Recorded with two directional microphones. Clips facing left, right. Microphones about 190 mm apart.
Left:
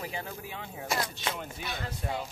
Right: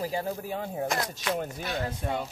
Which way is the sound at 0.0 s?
40° right (ahead or behind).